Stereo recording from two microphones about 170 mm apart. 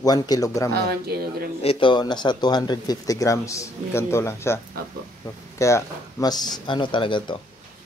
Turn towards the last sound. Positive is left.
turn(degrees=30)  # may be behind; listen again after turning